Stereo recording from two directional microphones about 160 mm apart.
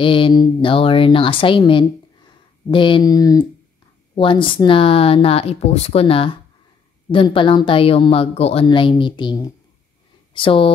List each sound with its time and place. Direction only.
0.0 s speech: 30° left (ahead or behind)